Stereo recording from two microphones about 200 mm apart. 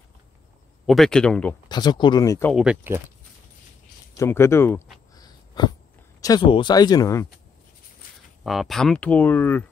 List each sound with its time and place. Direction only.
0.8 s speech: centre (ahead or behind)
1.7 s speech: 20° left (ahead or behind)
2.5 s speech: 5° right (ahead or behind)
4.2 s speech: 15° left (ahead or behind)
5.1 s a sound: 20° left (ahead or behind)
6.2 s speech: 20° left (ahead or behind)
8.5 s speech: centre (ahead or behind)